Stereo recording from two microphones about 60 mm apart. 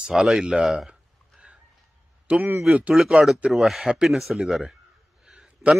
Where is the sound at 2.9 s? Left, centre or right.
Centre.